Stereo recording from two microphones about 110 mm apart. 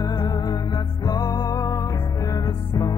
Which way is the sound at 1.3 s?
25° left (ahead or behind).